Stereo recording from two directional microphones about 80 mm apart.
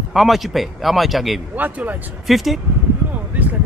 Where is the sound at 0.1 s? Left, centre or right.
Centre.